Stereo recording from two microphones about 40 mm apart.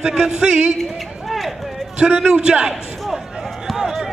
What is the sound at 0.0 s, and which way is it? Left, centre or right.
Speech, centre.